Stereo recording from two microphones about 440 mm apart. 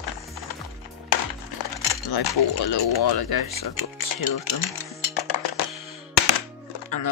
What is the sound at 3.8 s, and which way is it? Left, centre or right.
Music, left.